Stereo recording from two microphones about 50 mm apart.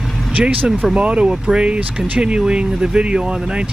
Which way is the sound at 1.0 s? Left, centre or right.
Centre.